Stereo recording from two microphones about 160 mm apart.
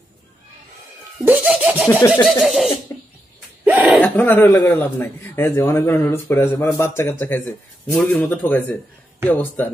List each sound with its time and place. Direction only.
1.2 s laughter: 10° right (ahead or behind)
2.2 s speech: centre (ahead or behind)
2.9 s cough: 15° left (ahead or behind)
3.6 s a sound: 10° right (ahead or behind)
4.0 s a man's voice: 10° left (ahead or behind)
7.9 s a man's voice: centre (ahead or behind)